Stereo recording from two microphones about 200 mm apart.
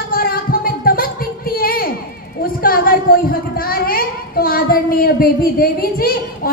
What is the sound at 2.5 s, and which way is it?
A woman's voice, 45° left (ahead or behind).